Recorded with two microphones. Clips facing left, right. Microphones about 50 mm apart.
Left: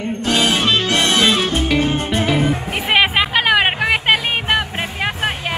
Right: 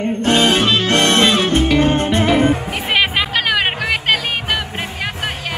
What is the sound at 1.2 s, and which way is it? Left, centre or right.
Music, centre.